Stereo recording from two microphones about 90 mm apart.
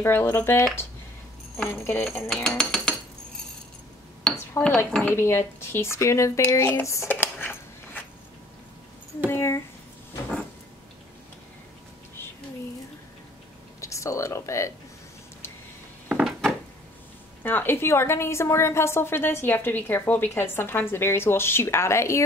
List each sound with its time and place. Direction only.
0.0 s a woman's voice: 25° left (ahead or behind)
1.7 s a woman's voice: 25° left (ahead or behind)
2.0 s cutlery: 5° left (ahead or behind)
4.2 s dishes: 10° left (ahead or behind)
5.0 s speech: 25° left (ahead or behind)
7.1 s a sound: 20° left (ahead or behind)
9.3 s a sound: 30° left (ahead or behind)
13.7 s a sound: 35° left (ahead or behind)
16.3 s wood: 5° left (ahead or behind)
17.4 s a woman's voice: 20° left (ahead or behind)